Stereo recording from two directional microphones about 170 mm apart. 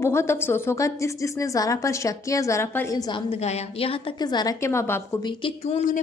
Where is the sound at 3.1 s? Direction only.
35° left (ahead or behind); by 4.9 s 15° left (ahead or behind).